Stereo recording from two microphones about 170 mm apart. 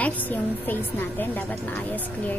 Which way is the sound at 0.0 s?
10° left (ahead or behind).